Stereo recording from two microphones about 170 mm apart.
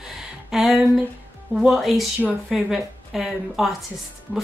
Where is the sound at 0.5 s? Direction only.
Centre (ahead or behind).